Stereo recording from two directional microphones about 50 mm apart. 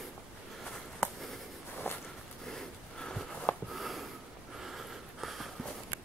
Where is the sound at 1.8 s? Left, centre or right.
Left.